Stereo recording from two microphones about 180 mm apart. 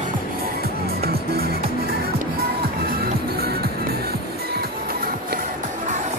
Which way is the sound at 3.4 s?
60° right (ahead or behind).